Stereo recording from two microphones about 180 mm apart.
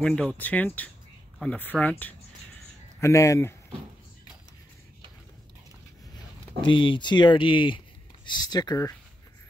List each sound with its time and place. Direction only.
0.0 s speech: 5° left (ahead or behind)
6.6 s speech: 25° left (ahead or behind)